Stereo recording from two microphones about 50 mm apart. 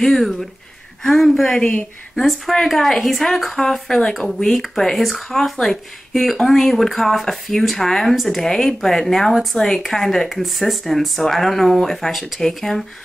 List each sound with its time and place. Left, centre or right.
0.0 s a woman's voice: centre
1.6 s a woman's voice: left
2.1 s a woman's voice: centre
9.6 s speech: centre